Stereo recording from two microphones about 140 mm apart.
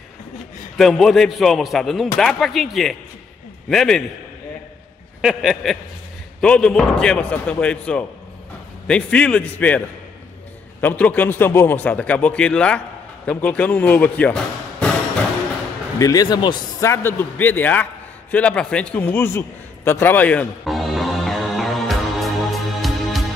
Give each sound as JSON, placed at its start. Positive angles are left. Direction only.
{"t": 0.7, "sound": "speech", "side_deg": 0}
{"t": 5.2, "sound": "a man's voice", "side_deg": -5}
{"t": 16.0, "sound": "a man's voice", "side_deg": 25}
{"t": 16.8, "sound": "a man's voice", "side_deg": 15}
{"t": 20.6, "sound": "music", "side_deg": 0}